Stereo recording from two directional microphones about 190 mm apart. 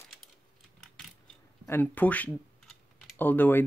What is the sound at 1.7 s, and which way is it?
Speech, 10° left (ahead or behind).